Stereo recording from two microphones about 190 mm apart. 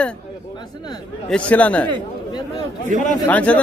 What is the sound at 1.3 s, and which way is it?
Speech, 5° left (ahead or behind).